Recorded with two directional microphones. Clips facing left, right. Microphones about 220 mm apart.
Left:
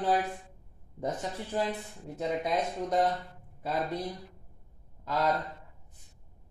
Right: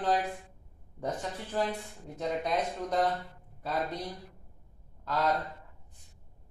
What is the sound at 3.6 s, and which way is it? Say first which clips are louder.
Speech: left 1 dB; 10° left (ahead or behind).